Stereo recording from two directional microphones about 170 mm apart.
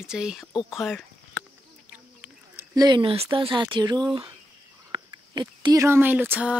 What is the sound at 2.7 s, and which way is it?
Speech, 25° right (ahead or behind).